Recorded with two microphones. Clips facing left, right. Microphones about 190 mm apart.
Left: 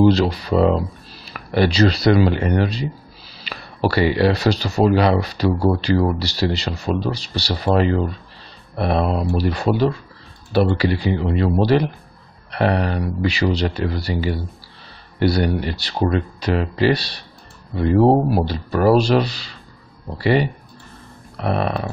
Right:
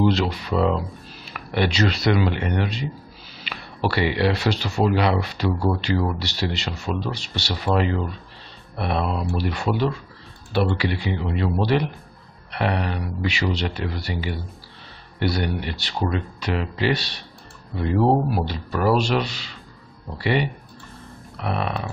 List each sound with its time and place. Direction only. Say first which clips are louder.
0.0 s speech: left 6 dB; 35° left (ahead or behind)